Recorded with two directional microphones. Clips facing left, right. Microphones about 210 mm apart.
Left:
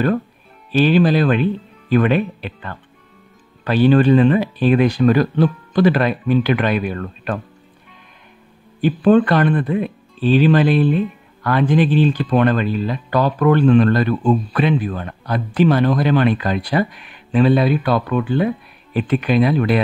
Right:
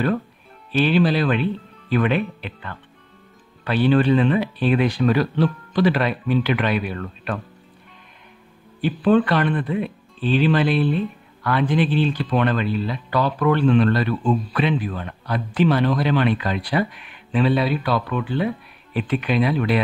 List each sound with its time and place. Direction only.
0.7 s speech: 40° left (ahead or behind)
8.8 s speech: 45° left (ahead or behind)